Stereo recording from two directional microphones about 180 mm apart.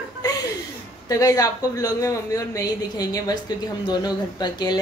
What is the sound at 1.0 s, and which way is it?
Speech, 20° left (ahead or behind).